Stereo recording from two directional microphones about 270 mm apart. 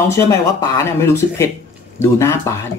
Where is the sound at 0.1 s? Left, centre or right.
Centre.